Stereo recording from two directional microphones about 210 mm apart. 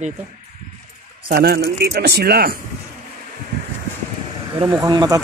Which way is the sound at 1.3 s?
50° right (ahead or behind).